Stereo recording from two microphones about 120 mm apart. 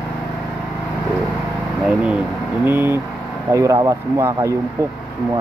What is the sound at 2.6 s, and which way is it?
Speech, 20° right (ahead or behind).